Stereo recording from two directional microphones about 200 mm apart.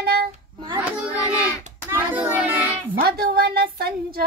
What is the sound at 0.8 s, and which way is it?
Child singing, 5° right (ahead or behind).